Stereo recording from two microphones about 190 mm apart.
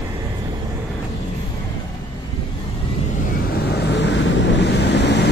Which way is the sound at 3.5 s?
60° left (ahead or behind).